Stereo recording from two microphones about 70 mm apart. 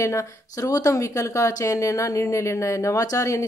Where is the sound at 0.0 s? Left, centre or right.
Left.